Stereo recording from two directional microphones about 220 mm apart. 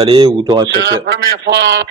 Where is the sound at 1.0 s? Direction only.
45° right (ahead or behind).